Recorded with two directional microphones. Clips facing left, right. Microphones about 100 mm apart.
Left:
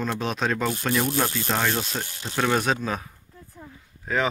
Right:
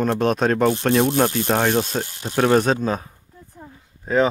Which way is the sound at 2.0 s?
20° right (ahead or behind).